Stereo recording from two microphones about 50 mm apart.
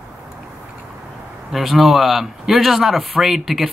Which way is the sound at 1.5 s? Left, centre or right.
Centre.